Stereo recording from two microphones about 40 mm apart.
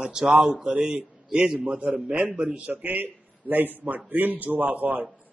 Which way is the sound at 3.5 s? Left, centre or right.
Right.